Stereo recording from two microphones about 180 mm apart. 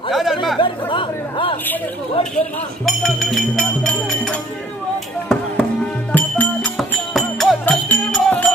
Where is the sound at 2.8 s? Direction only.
Centre (ahead or behind).